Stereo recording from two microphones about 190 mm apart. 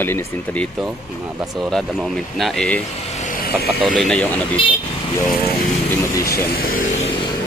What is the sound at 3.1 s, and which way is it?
Vehicle, 45° left (ahead or behind).